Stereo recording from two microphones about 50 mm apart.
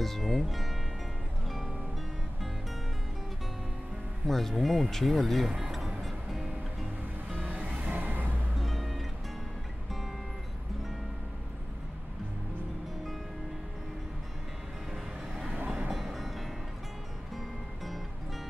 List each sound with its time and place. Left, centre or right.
0.0 s speech: centre
4.3 s speech: centre
5.9 s music: centre
7.4 s music: right
7.9 s vehicle: right
8.5 s music: centre
15.9 s music: centre